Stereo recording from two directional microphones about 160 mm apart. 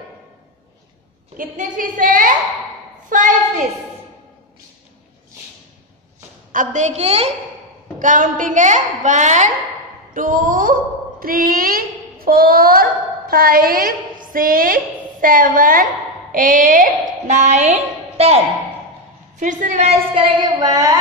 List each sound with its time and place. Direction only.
1.3 s a woman's voice: 60° right (ahead or behind)
3.1 s a sound: 55° right (ahead or behind)
6.5 s a woman's voice: 55° right (ahead or behind)
8.0 s a woman's voice: 55° right (ahead or behind)
19.4 s a woman's voice: 50° right (ahead or behind); by 21.0 s 25° right (ahead or behind)